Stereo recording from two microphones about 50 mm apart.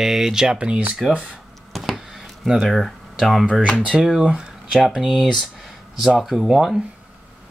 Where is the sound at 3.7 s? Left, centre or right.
Right; by 6.8 s centre.